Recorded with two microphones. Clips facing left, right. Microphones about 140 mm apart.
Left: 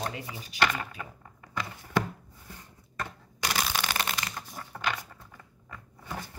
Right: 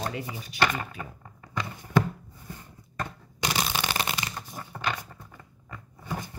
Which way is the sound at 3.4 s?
20° right (ahead or behind).